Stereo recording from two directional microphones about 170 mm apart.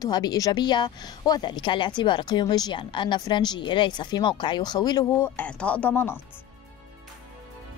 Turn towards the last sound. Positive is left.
turn(degrees=10)  # may be behind; listen again after turning